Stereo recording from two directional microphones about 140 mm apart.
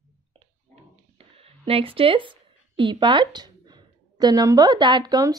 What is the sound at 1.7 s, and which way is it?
Speech, 40° right (ahead or behind).